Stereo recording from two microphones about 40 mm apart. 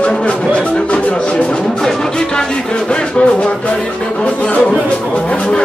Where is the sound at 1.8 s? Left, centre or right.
Centre.